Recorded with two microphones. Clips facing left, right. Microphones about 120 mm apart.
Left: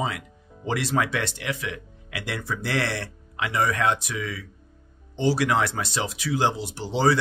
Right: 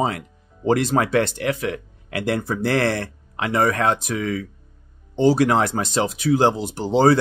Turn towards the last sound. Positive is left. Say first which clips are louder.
# right 6 dB
turn(degrees=-50)  # may be behind; listen again after turning